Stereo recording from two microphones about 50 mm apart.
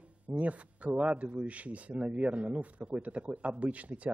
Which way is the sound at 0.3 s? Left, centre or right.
Right.